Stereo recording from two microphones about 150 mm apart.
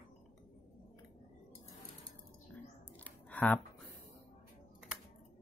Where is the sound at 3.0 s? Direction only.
10° left (ahead or behind).